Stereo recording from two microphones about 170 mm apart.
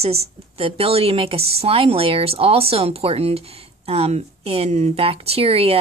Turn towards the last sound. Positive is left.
turn(degrees=-35)  # may be behind; listen again after turning